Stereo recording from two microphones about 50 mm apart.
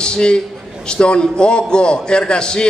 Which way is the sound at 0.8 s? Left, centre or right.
Centre.